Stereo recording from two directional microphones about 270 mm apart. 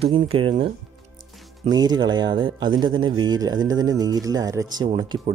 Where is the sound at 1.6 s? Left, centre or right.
Centre.